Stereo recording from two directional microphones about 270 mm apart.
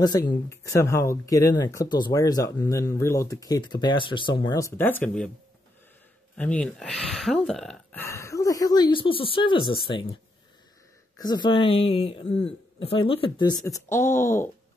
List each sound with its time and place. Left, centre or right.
0.0 s speech: centre
6.3 s speech: centre
11.1 s speech: centre